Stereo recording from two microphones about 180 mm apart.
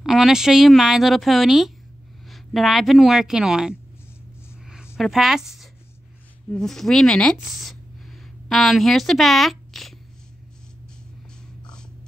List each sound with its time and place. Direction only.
0.0 s a woman's voice: centre (ahead or behind)
4.9 s a woman's voice: centre (ahead or behind)